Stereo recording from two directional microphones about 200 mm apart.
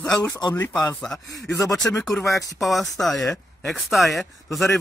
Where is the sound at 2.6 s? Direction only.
Centre (ahead or behind).